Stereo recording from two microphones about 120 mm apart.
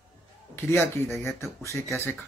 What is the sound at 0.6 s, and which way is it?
Speech, 20° left (ahead or behind).